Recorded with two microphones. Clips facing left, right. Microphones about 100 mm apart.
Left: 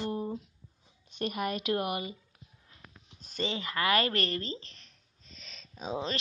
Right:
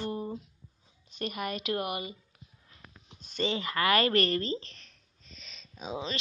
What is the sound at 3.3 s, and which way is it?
Speech, 30° left (ahead or behind).